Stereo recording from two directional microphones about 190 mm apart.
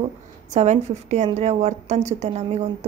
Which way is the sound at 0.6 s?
35° right (ahead or behind).